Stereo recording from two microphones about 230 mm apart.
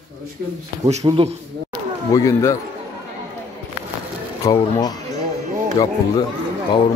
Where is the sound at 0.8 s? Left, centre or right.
Right.